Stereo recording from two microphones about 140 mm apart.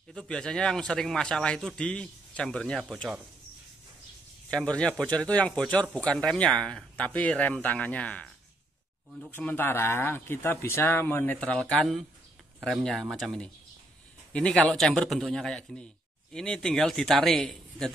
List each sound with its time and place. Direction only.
0.1 s a man's voice: 5° left (ahead or behind)
4.5 s speech: 5° left (ahead or behind)
9.3 s a man's voice: 15° left (ahead or behind)